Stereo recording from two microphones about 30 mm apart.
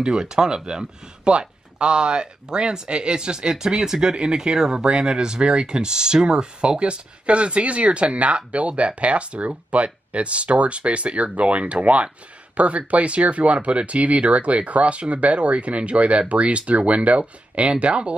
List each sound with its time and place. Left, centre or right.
0.1 s speech: right
1.3 s speech: right